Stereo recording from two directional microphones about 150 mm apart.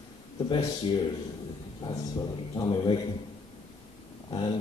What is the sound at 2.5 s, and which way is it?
Speech, 30° left (ahead or behind).